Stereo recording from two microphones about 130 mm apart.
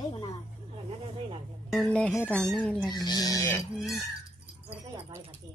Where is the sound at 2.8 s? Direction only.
30° left (ahead or behind).